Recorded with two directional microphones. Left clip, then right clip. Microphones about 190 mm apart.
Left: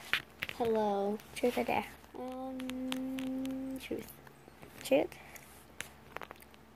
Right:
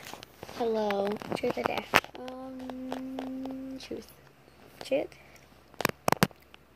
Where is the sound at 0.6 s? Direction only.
25° right (ahead or behind).